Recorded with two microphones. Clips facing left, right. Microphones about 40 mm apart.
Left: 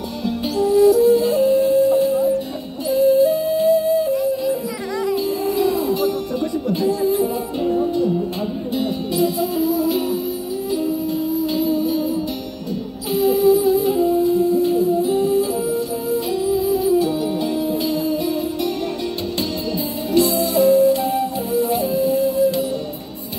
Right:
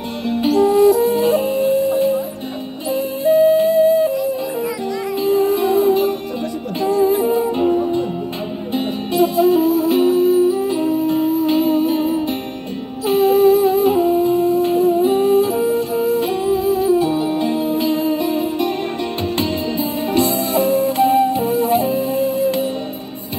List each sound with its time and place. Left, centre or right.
0.2 s music: right
19.3 s flute: right